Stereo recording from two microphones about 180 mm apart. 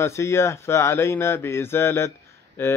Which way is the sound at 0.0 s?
15° left (ahead or behind).